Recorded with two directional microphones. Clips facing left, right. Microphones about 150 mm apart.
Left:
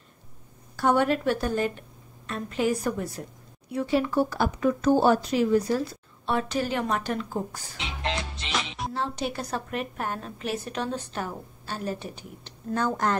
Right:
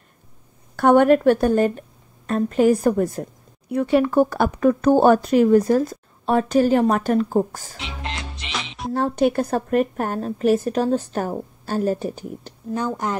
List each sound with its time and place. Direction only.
0.7 s a woman's voice: 55° right (ahead or behind)
3.7 s speech: 60° right (ahead or behind)
8.5 s music: centre (ahead or behind)
8.9 s speech: 50° right (ahead or behind)
12.6 s speech: 15° right (ahead or behind)